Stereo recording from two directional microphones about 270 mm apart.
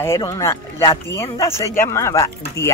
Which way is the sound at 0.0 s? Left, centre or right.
Centre.